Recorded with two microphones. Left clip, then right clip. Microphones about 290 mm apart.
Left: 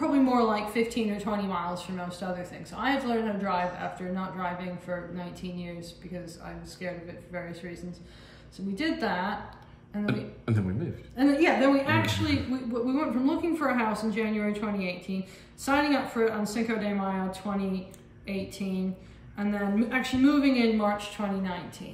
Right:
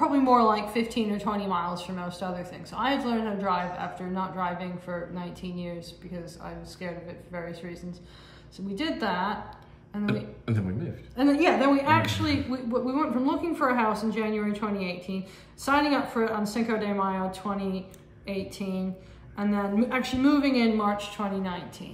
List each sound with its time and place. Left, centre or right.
0.0 s a woman's voice: centre
10.0 s speech: centre
11.1 s a woman's voice: centre